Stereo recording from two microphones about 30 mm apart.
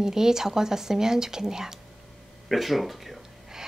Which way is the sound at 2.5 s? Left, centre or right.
Centre.